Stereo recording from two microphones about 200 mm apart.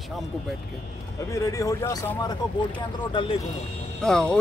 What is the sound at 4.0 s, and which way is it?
Speech, 5° left (ahead or behind).